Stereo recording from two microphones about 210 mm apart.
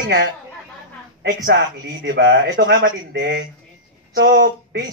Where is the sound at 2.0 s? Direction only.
50° right (ahead or behind).